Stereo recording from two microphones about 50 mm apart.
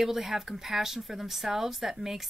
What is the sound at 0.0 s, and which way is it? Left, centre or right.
Speech, centre.